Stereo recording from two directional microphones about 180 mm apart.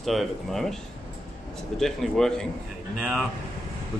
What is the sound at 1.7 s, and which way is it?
Speech, centre (ahead or behind).